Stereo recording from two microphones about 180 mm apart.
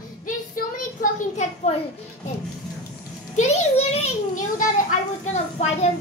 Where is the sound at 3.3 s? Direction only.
40° left (ahead or behind).